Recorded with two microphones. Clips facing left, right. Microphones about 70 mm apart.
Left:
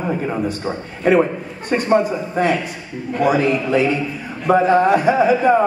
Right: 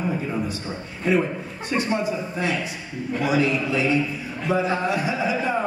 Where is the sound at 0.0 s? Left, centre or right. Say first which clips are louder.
Left 5 dB; left.